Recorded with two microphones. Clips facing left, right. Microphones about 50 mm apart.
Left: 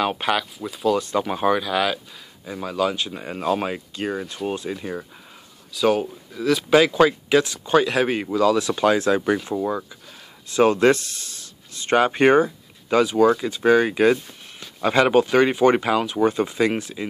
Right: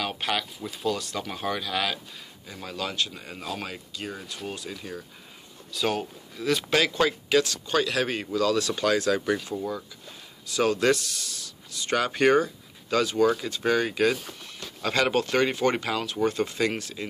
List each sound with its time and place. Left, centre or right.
0.0 s speech: centre
0.9 s speech: left
1.6 s speech: centre
3.1 s speech: left
5.7 s speech: centre; by 13.0 s left
13.0 s speech: centre